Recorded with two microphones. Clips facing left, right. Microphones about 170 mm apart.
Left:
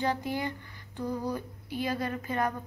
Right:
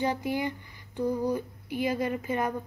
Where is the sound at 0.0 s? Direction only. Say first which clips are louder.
Right 2 dB; 15° right (ahead or behind).